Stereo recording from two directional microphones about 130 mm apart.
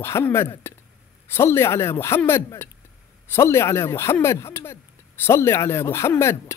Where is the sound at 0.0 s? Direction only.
20° left (ahead or behind).